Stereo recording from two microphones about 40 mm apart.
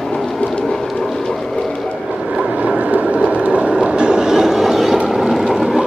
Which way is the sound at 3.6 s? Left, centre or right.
Right.